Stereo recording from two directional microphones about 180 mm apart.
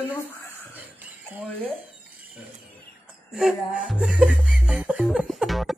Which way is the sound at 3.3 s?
5° right (ahead or behind).